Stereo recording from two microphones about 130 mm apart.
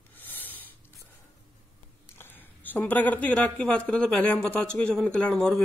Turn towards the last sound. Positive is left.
turn(degrees=5)  # may be behind; listen again after turning